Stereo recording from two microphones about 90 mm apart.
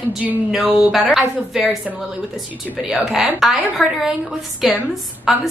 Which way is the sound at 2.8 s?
5° right (ahead or behind).